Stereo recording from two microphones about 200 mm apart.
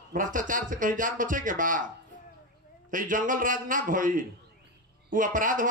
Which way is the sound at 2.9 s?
40° right (ahead or behind).